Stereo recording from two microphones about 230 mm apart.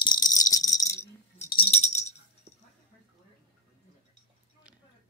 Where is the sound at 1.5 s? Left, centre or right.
Left.